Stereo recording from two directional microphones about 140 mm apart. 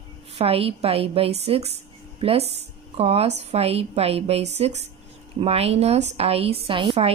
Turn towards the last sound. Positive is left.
turn(degrees=-40)  # may be behind; listen again after turning